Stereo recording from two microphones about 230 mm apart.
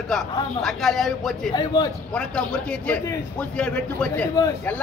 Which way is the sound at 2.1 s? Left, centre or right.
Centre.